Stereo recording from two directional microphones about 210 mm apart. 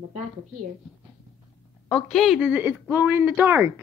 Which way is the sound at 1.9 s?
Centre (ahead or behind).